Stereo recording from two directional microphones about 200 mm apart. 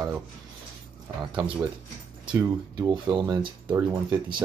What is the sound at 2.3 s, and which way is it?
Speech, 15° right (ahead or behind).